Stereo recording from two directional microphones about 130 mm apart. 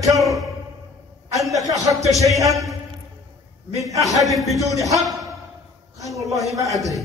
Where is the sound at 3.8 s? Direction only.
25° right (ahead or behind).